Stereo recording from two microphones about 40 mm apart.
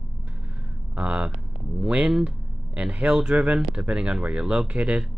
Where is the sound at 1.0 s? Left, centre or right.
Right.